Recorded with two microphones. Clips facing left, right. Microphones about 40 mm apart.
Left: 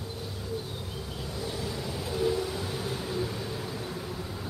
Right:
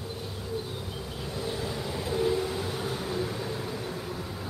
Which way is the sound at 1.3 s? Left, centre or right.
Right.